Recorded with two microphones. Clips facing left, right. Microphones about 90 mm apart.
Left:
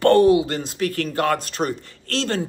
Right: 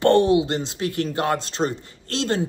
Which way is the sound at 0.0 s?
25° right (ahead or behind).